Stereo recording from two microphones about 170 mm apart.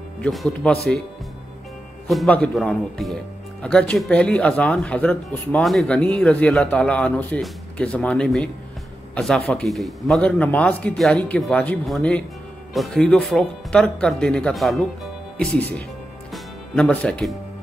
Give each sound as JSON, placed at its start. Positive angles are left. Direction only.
{"t": 0.2, "sound": "speech", "side_deg": 5}
{"t": 2.0, "sound": "speech", "side_deg": 5}
{"t": 16.3, "sound": "music", "side_deg": 5}